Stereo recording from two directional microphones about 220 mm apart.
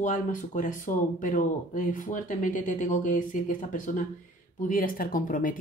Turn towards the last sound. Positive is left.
turn(degrees=40)  # may be behind; listen again after turning